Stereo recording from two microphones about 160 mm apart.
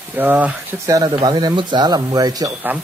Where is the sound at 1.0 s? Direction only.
25° right (ahead or behind).